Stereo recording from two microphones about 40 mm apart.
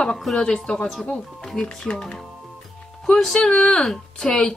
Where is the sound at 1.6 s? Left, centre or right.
Centre.